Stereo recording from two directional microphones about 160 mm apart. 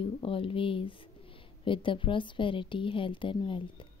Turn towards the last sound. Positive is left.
turn(degrees=30)  # may be behind; listen again after turning